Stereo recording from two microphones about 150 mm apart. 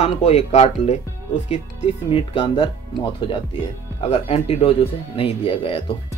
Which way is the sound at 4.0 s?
40° left (ahead or behind).